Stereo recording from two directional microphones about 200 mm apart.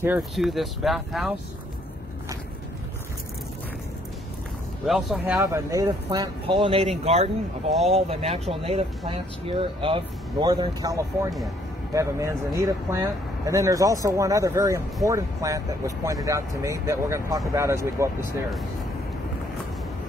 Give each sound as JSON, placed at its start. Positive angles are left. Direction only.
{"t": 0.0, "sound": "speech", "side_deg": -5}
{"t": 4.8, "sound": "speech", "side_deg": 0}
{"t": 5.2, "sound": "speech", "side_deg": -10}